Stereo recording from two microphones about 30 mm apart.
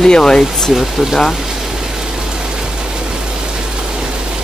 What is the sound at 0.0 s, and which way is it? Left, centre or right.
Speech, left.